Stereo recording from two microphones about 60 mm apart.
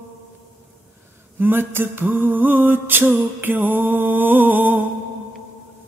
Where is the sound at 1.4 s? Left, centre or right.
Right.